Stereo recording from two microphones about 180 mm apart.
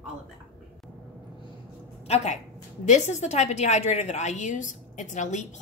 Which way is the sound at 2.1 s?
40° left (ahead or behind).